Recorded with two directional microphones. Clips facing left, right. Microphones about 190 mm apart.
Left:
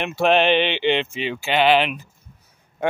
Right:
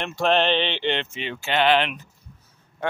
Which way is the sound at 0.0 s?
10° left (ahead or behind).